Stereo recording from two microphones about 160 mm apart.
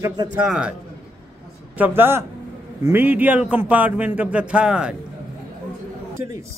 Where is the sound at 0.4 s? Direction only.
5° right (ahead or behind).